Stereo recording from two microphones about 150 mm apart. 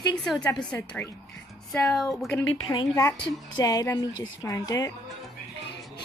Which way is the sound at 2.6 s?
30° left (ahead or behind).